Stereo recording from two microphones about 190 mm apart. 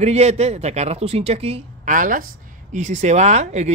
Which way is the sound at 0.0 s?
35° right (ahead or behind).